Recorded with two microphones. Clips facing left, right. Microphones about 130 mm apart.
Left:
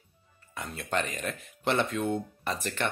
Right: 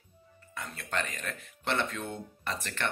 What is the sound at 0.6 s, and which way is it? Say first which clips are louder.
Speech: left 4 dB; 20° left (ahead or behind).